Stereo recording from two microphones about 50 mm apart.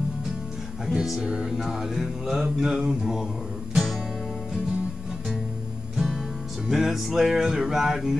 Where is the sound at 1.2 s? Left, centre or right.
Centre.